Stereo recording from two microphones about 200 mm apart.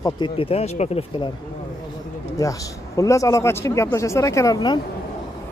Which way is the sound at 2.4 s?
15° left (ahead or behind).